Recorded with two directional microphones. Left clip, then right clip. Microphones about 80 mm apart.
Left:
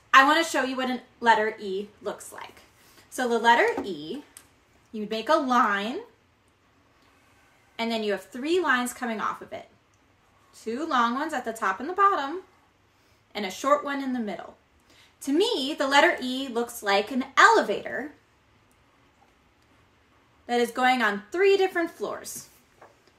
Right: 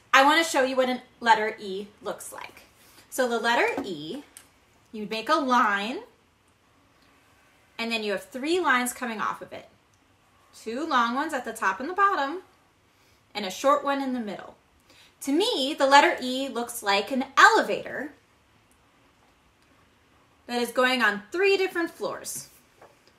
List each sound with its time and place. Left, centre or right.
0.1 s a woman's voice: right
7.7 s a woman's voice: right
10.6 s a woman's voice: right
20.4 s a woman's voice: right